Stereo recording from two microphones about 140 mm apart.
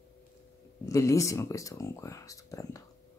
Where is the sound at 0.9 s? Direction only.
20° left (ahead or behind).